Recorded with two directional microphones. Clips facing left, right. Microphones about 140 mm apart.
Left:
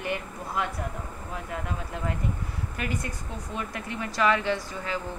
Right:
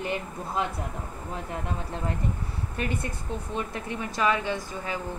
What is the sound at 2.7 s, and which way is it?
A woman's voice, 30° right (ahead or behind).